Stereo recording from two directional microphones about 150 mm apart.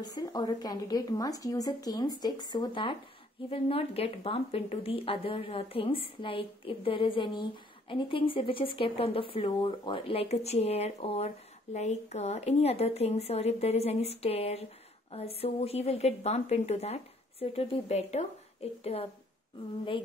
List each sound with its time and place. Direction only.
0.0 s a woman's voice: 25° left (ahead or behind); by 19.0 s 45° left (ahead or behind)